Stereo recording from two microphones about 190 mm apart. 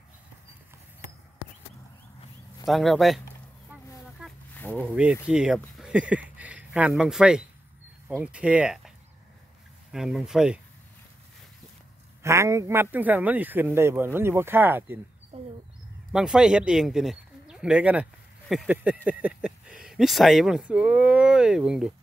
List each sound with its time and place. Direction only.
2.6 s speech: centre (ahead or behind)
3.7 s a sound: 5° right (ahead or behind)
4.6 s a sound: 10° left (ahead or behind)
4.8 s a man's voice: 5° right (ahead or behind)
9.9 s speech: centre (ahead or behind)
12.2 s a man's voice: 15° right (ahead or behind)
15.3 s bird: 35° right (ahead or behind)
16.1 s speech: 5° right (ahead or behind)